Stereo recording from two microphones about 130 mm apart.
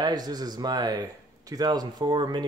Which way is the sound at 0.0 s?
30° right (ahead or behind).